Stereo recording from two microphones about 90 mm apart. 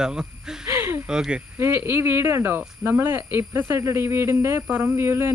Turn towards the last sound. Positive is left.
turn(degrees=-25)  # may be behind; listen again after turning